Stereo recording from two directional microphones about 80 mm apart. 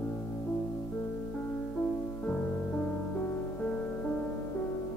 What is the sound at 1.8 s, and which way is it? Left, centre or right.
Music, centre.